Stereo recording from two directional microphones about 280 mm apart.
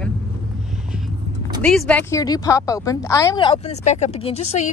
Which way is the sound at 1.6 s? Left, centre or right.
Centre.